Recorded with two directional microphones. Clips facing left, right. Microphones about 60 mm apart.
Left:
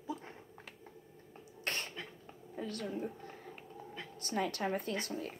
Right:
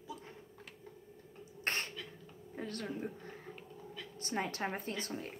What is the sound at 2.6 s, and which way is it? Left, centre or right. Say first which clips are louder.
Speech: left 1 dB; right.